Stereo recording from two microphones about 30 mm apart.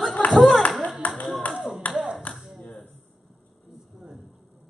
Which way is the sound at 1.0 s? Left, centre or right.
Left.